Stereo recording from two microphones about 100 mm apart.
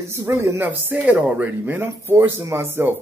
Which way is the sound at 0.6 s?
15° right (ahead or behind).